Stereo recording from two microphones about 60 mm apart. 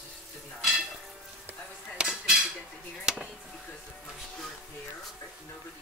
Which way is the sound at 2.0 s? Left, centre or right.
Centre.